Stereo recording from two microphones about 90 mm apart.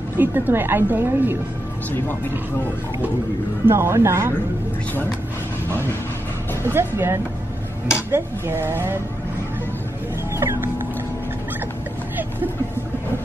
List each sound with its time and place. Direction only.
0.2 s a woman's voice: 20° right (ahead or behind)
3.6 s a woman's voice: 30° right (ahead or behind)
6.6 s a woman's voice: 25° right (ahead or behind)
10.3 s speech: 30° right (ahead or behind)